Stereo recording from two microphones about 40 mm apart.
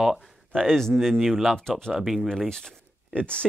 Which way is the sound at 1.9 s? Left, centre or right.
Centre.